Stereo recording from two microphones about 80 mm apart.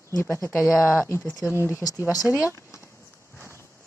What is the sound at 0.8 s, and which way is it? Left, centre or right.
Speech, centre.